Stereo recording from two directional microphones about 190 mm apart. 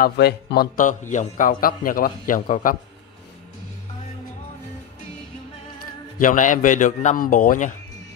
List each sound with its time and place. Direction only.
0.0 s a man's voice: 55° left (ahead or behind)
6.1 s a man's voice: 45° left (ahead or behind)